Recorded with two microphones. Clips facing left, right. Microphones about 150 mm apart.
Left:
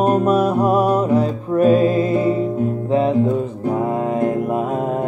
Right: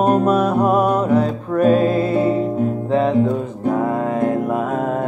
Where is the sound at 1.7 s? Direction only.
40° right (ahead or behind).